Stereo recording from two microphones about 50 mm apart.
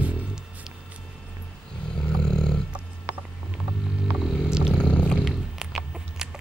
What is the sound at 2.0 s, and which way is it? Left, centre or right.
Roar, centre.